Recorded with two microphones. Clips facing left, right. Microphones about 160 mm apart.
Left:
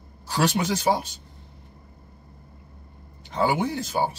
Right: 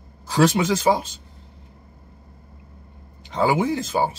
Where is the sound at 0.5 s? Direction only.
90° right.